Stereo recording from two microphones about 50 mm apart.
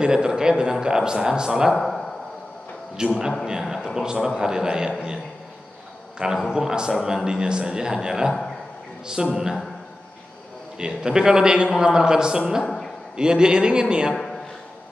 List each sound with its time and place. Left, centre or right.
0.0 s a man's voice: centre
1.7 s speech: centre
3.0 s a man's voice: centre
6.1 s a man's voice: centre
10.8 s a man's voice: centre
12.6 s a sound: centre
13.1 s a man's voice: centre
14.1 s a sound: centre